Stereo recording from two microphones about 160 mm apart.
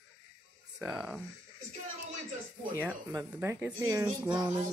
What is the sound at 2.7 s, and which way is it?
Speech, 15° right (ahead or behind).